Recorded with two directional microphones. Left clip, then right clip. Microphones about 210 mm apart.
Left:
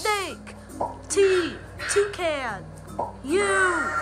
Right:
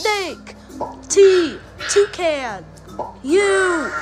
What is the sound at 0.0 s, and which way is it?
Music, 15° right (ahead or behind).